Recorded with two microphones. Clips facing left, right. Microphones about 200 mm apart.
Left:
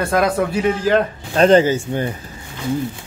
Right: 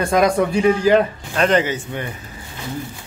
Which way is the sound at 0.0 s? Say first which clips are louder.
Right 1 dB; 5° left (ahead or behind).